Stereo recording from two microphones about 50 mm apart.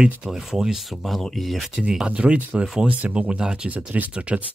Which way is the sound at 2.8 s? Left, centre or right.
Right.